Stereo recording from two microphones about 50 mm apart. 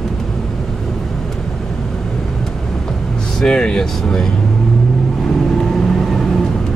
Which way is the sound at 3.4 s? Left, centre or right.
Centre.